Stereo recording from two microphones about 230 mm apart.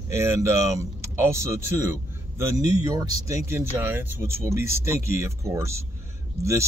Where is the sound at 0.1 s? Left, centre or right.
Centre.